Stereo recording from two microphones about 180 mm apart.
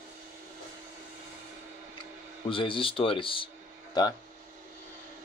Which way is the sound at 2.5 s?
30° left (ahead or behind).